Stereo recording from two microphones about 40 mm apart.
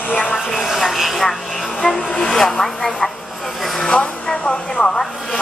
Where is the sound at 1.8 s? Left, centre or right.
Centre.